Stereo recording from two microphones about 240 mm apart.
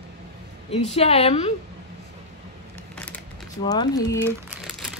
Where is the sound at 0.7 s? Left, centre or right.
Left.